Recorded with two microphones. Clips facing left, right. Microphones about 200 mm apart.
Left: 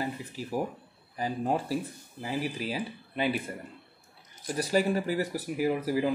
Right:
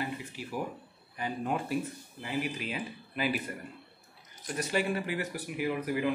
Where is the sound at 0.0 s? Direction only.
35° left (ahead or behind).